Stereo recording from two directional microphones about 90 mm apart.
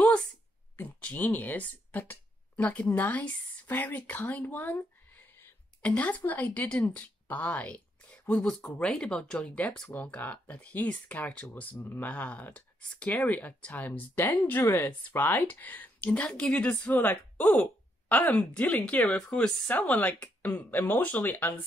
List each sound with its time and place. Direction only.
0.7 s speech: 20° left (ahead or behind)